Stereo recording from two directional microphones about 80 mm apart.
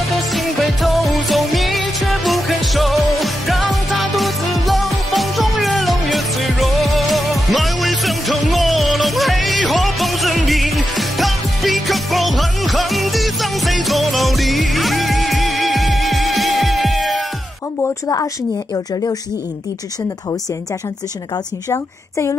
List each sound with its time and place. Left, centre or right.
0.1 s music: centre
18.0 s speech: left
21.6 s a woman's voice: left